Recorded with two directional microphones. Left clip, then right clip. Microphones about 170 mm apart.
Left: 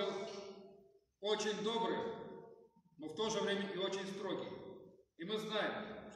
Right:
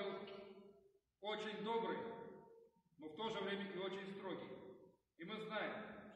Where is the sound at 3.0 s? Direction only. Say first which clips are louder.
Left 7 dB; 20° left (ahead or behind).